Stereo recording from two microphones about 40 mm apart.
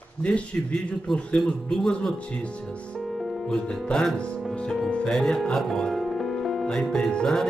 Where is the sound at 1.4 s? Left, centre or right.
Centre.